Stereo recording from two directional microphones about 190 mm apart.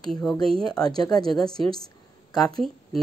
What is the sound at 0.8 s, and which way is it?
Speech, 20° left (ahead or behind).